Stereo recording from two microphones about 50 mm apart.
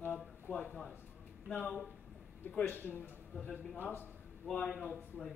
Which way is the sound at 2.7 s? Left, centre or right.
Left.